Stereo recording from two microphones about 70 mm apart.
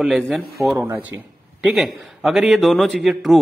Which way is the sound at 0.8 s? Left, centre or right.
Right.